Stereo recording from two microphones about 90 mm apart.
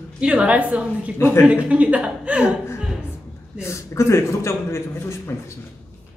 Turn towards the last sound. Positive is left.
turn(degrees=30)  # may be behind; listen again after turning